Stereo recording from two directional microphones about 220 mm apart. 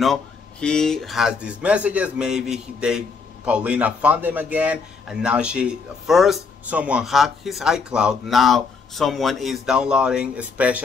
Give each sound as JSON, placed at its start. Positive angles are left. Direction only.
{"t": 0.0, "sound": "a man's voice", "side_deg": 0}